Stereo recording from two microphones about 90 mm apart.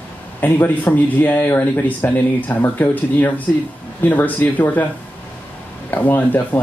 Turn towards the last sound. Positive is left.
turn(degrees=20)  # may be behind; listen again after turning